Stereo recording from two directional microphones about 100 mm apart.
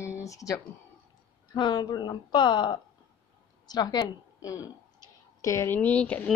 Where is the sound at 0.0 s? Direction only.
30° left (ahead or behind).